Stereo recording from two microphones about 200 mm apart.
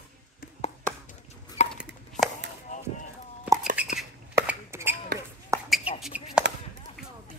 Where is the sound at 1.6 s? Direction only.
35° left (ahead or behind).